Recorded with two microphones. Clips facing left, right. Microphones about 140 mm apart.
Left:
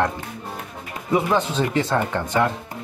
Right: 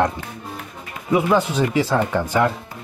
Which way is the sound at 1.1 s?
5° right (ahead or behind).